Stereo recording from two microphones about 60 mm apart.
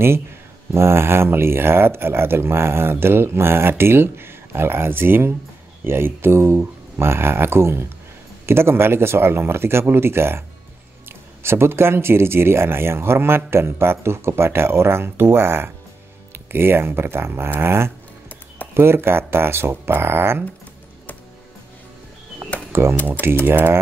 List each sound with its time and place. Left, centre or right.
0.7 s speech: right
22.7 s speech: right